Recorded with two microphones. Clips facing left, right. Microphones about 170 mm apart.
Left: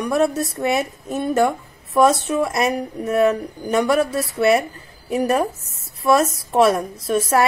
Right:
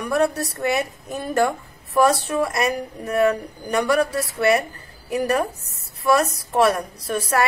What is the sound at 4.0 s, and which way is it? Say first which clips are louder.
A woman's voice: left 2 dB; 25° left (ahead or behind).